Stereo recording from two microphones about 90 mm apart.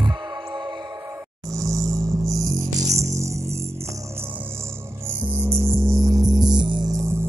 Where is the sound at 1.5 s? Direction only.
35° right (ahead or behind).